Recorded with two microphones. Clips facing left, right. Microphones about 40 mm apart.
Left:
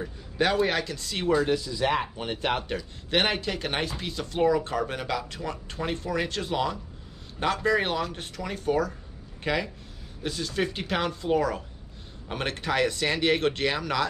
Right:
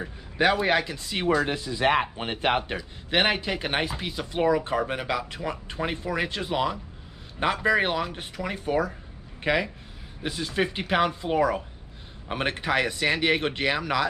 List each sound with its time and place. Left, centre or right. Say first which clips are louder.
0.0 s speech: right 3 dB; centre